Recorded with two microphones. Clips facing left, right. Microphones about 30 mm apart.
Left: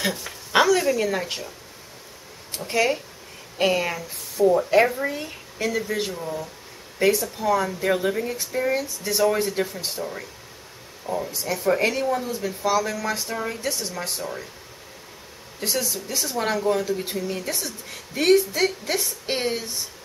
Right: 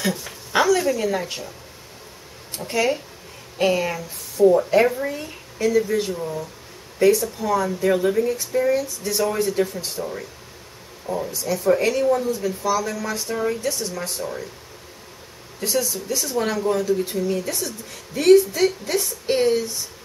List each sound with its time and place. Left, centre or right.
0.5 s a woman's voice: centre
2.5 s speech: centre
6.1 s speech: centre
7.0 s speech: centre
11.1 s speech: centre
11.3 s speech: centre
13.3 s speech: centre
13.6 s speech: centre
15.6 s speech: centre